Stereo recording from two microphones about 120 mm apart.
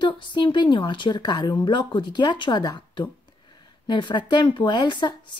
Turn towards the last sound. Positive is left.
turn(degrees=40)  # may be behind; listen again after turning